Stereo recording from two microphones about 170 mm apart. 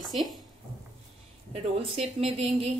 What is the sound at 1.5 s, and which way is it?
A woman's voice, 35° right (ahead or behind).